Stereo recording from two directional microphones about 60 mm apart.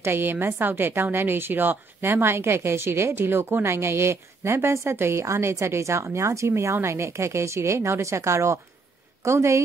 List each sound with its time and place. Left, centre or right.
0.0 s a woman's voice: right